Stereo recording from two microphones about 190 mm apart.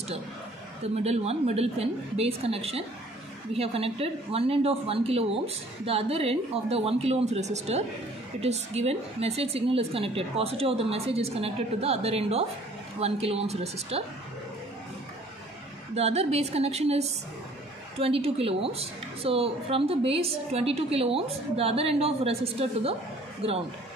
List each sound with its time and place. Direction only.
0.9 s speech: 35° right (ahead or behind)
15.9 s speech: 35° right (ahead or behind)